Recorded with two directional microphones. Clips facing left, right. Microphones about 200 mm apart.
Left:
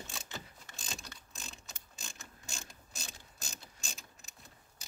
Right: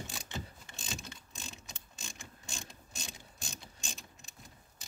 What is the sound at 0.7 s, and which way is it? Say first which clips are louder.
Mechanisms: right 3 dB; centre (ahead or behind).